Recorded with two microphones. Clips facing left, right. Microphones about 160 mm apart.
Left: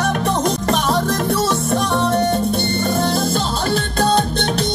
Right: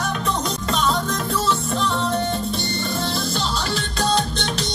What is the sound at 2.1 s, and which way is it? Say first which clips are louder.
Music: left 6 dB; 50° left (ahead or behind).